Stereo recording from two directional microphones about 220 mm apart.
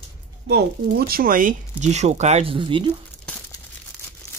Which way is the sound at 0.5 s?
45° right (ahead or behind).